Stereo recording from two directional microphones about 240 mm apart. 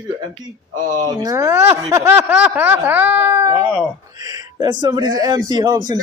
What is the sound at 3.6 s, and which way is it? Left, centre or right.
Speech, centre.